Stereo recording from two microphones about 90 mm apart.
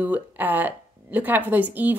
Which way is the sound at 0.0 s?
20° right (ahead or behind).